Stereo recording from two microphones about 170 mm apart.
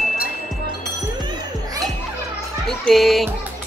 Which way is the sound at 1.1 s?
25° right (ahead or behind).